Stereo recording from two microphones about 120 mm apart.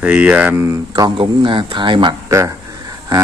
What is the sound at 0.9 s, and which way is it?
Speech, 40° right (ahead or behind).